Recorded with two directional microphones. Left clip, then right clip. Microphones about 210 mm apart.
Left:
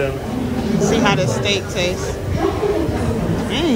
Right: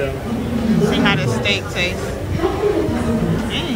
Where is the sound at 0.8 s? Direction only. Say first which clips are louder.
Left 2 dB; 25° left (ahead or behind).